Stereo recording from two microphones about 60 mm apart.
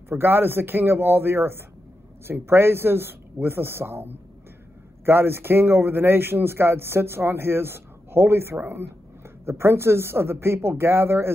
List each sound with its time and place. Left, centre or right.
0.1 s a man's voice: right